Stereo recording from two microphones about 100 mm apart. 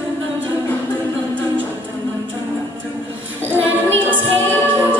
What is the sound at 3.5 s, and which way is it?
Music, 20° left (ahead or behind).